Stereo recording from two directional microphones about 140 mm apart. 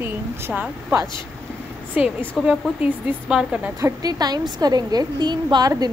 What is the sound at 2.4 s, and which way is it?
Speech, 10° right (ahead or behind).